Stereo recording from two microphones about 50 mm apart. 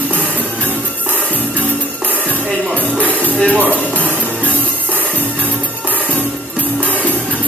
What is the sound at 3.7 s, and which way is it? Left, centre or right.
Music, left.